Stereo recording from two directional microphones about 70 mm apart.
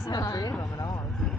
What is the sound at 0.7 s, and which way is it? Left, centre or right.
Vehicle, left.